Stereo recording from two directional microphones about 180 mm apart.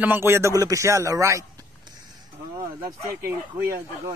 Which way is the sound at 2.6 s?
15° right (ahead or behind).